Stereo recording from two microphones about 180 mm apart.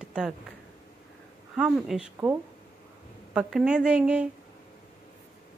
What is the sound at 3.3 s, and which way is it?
Speech, 5° right (ahead or behind).